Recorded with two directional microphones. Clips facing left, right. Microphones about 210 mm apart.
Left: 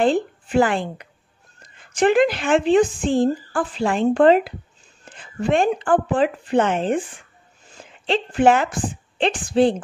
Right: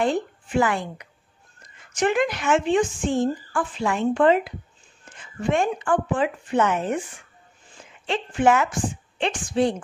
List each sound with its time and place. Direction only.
0.0 s a woman's voice: 30° left (ahead or behind)
5.0 s a sound: 35° left (ahead or behind)
5.8 s a woman's voice: 35° left (ahead or behind)